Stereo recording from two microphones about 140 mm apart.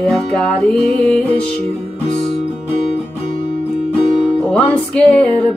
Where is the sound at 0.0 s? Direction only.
5° left (ahead or behind).